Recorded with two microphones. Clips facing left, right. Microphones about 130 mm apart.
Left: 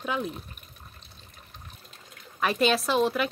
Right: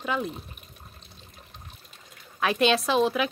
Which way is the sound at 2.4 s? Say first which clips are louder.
Right 1 dB; centre (ahead or behind).